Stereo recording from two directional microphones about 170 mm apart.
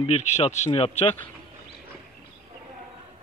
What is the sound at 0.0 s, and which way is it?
Speech, 40° left (ahead or behind).